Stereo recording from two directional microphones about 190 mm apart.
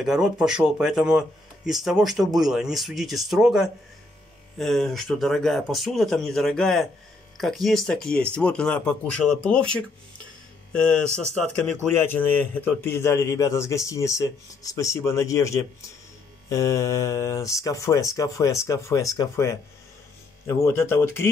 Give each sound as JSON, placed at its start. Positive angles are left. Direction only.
{"t": 0.0, "sound": "a man's voice", "side_deg": -5}